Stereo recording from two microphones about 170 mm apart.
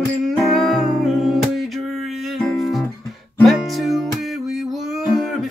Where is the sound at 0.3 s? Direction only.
Centre (ahead or behind).